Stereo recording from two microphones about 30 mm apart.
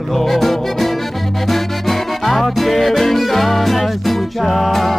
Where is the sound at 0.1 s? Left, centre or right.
Centre.